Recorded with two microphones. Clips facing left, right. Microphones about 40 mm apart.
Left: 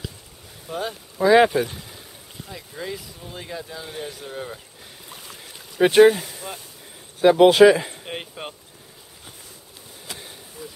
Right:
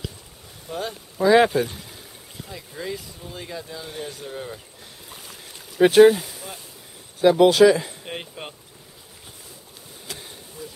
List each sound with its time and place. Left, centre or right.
0.7 s speech: centre
5.1 s boat: centre
7.2 s speech: left
8.0 s speech: centre
10.0 s a sound: centre